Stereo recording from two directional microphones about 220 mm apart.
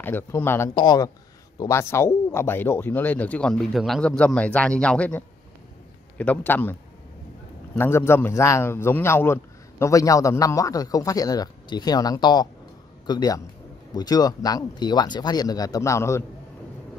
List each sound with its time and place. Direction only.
0.0 s a man's voice: 10° left (ahead or behind)